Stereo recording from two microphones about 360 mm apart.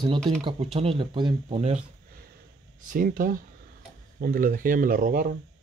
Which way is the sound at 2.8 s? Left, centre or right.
Right.